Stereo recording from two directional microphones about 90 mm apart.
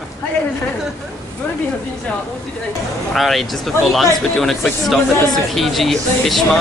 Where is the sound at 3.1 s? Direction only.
Centre (ahead or behind).